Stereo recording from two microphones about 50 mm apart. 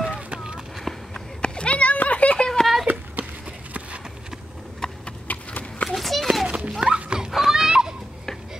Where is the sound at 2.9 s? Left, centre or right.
Right.